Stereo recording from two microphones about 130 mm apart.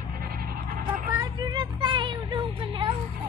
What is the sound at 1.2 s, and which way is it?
Music, 35° right (ahead or behind).